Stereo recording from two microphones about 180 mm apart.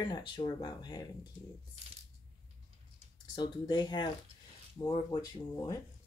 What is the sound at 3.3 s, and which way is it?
Speech, 25° left (ahead or behind).